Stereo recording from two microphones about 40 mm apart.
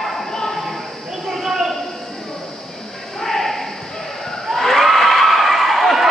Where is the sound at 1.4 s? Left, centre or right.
Centre.